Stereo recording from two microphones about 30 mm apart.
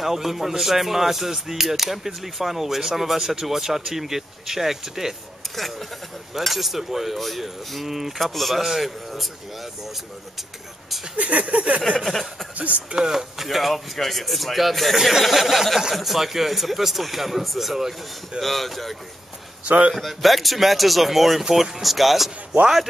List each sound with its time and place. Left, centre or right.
0.0 s speech: centre
5.4 s a sound: centre
6.3 s a man's voice: centre
8.3 s a man's voice: centre
11.1 s a sound: right
12.0 s a sound: centre
12.5 s speech: right
13.1 s a man's voice: centre
18.4 s a man's voice: centre